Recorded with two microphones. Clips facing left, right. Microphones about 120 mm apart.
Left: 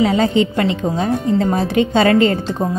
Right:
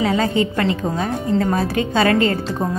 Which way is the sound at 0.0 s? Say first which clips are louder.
Left 3 dB; 25° left (ahead or behind).